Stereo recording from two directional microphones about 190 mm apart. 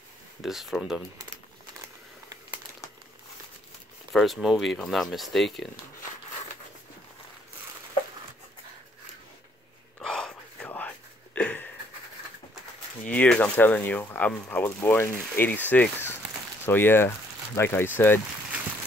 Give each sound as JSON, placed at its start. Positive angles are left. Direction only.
{"t": 0.4, "sound": "speech", "side_deg": 0}
{"t": 4.1, "sound": "speech", "side_deg": 0}
{"t": 9.9, "sound": "whispering", "side_deg": 5}
{"t": 11.3, "sound": "a sound", "side_deg": 5}
{"t": 13.1, "sound": "speech", "side_deg": 10}